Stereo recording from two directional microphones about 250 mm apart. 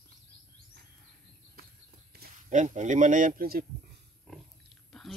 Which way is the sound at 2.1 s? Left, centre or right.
Right.